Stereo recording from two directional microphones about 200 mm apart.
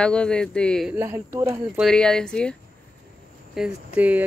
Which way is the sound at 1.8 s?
5° left (ahead or behind).